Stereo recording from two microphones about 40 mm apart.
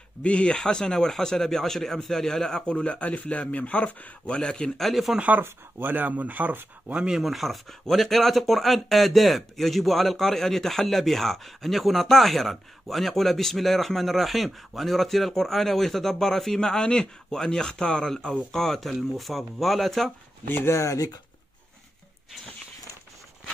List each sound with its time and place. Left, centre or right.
0.2 s speech: left; by 2.6 s centre
2.6 s speech: left
4.4 s speech: centre
4.8 s a man's voice: centre
5.4 s speech: right
7.1 s a man's voice: centre